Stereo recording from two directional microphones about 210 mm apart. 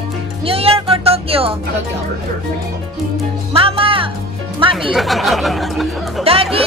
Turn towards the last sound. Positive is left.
turn(degrees=-25)  # may be behind; listen again after turning